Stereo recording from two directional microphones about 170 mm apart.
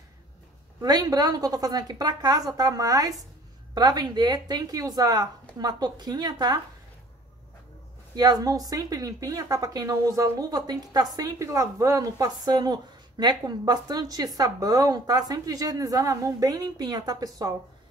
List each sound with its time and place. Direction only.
0.7 s speech: 25° right (ahead or behind)
8.2 s speech: 20° right (ahead or behind)